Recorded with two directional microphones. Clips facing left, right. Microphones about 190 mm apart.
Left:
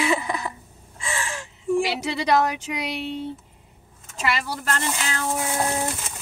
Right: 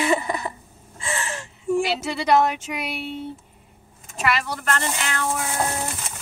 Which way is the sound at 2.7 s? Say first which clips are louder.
Left 1 dB; 20° left (ahead or behind).